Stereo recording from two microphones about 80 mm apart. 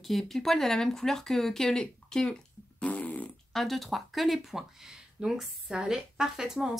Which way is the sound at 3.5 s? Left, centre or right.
Centre.